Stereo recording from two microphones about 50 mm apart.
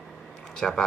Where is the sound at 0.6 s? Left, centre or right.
Centre.